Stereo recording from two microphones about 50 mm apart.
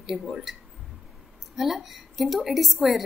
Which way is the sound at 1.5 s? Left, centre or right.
Centre.